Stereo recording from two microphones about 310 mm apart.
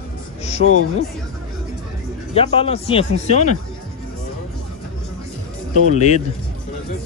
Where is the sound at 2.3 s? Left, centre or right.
Centre.